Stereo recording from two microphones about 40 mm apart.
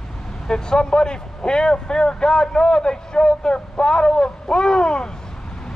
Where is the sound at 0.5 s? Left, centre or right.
Centre.